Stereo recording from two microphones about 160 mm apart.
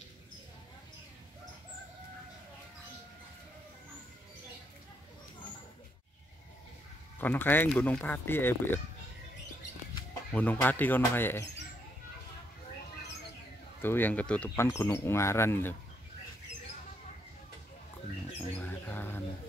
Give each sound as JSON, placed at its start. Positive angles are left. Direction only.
{"t": 7.2, "sound": "speech", "side_deg": 10}
{"t": 10.3, "sound": "speech", "side_deg": 10}
{"t": 13.8, "sound": "speech", "side_deg": 10}
{"t": 18.6, "sound": "bird", "side_deg": 15}